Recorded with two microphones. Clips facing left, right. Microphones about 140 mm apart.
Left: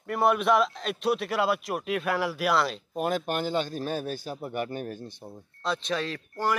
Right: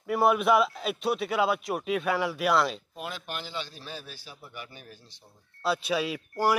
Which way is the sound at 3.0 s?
45° left (ahead or behind).